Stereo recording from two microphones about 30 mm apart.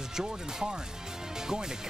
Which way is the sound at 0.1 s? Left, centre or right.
Right.